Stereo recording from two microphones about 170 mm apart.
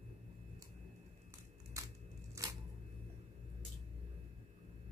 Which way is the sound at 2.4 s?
15° right (ahead or behind).